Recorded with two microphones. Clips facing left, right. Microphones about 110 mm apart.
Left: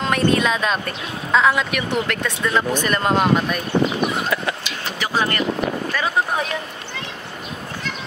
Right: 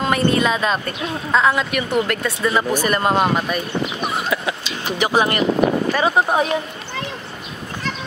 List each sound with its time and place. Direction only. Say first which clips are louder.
0.0 s speech: right 1 dB; 5° right (ahead or behind)
4.3 s a sound: right 1 dB; 5° right (ahead or behind)
4.9 s speech: right 4 dB; 20° right (ahead or behind)